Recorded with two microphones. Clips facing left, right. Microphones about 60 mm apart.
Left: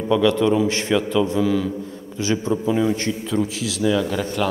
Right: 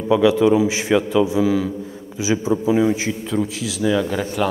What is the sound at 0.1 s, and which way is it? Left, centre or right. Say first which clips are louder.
A man's voice: right 3 dB; centre.